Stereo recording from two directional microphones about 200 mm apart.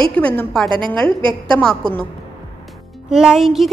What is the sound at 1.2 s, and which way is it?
Speech, 25° right (ahead or behind).